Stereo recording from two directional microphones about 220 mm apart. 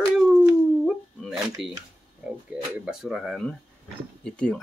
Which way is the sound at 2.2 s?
5° right (ahead or behind).